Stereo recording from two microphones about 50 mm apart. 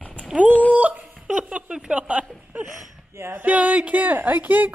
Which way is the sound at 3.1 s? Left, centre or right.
Right.